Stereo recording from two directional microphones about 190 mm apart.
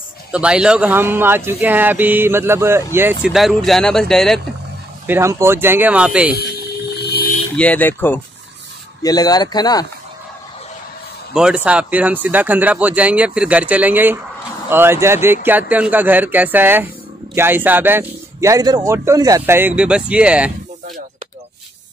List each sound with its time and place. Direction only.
0.3 s speech: 5° right (ahead or behind)
5.0 s speech: 15° right (ahead or behind)
7.0 s mechanisms: 55° left (ahead or behind)
7.5 s speech: 10° left (ahead or behind)
11.3 s speech: 5° right (ahead or behind)